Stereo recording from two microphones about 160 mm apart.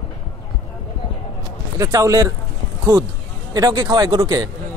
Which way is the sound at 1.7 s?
20° right (ahead or behind).